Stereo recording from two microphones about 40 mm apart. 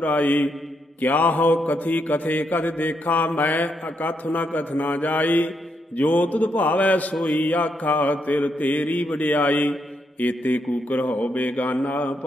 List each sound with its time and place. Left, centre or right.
0.0 s mantra: left
7.2 s mantra: centre
7.4 s mantra: left
9.1 s a man's voice: left
10.2 s mantra: left